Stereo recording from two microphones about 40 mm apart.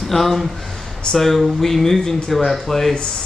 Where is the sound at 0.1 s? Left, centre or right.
Centre.